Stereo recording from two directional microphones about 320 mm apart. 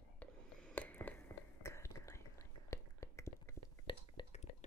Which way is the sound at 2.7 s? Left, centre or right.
Centre.